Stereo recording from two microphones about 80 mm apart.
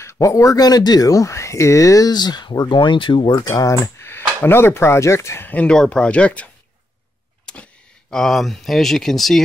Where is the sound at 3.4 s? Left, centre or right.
Left.